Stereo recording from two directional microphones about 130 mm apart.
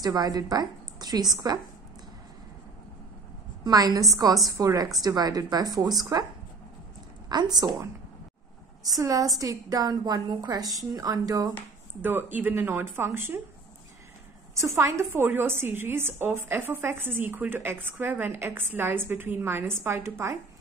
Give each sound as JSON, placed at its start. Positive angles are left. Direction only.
{"t": 0.0, "sound": "a woman's voice", "side_deg": -30}
{"t": 3.6, "sound": "a woman's voice", "side_deg": -30}
{"t": 7.2, "sound": "a woman's voice", "side_deg": -30}
{"t": 8.8, "sound": "a woman's voice", "side_deg": -30}
{"t": 11.5, "sound": "a woman's voice", "side_deg": -15}
{"t": 14.5, "sound": "a woman's voice", "side_deg": -25}